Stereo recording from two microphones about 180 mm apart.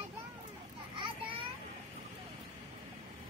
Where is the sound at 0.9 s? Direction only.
30° right (ahead or behind).